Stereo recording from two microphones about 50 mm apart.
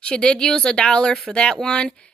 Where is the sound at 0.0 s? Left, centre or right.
Centre.